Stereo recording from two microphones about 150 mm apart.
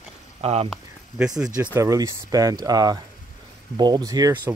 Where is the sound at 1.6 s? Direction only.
15° right (ahead or behind).